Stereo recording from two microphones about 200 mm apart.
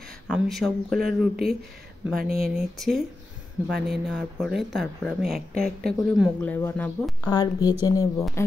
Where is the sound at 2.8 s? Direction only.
Centre (ahead or behind).